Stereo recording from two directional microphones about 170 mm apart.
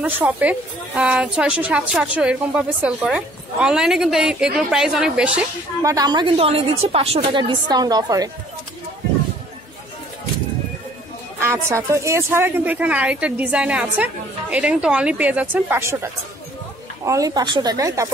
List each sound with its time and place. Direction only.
0.0 s a woman's voice: 10° right (ahead or behind)
5.8 s a woman's voice: 20° right (ahead or behind)
11.4 s speech: 15° right (ahead or behind)